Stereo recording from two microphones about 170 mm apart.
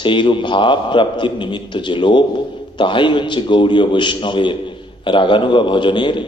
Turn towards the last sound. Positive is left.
turn(degrees=30)  # may be behind; listen again after turning